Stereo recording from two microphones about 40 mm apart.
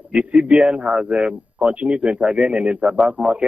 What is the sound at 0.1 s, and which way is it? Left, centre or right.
Speech, right.